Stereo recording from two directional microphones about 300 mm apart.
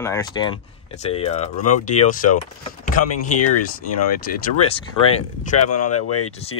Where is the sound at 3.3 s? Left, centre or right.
Left.